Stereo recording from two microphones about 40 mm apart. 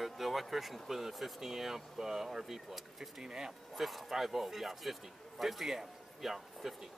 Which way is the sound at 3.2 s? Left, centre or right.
Centre.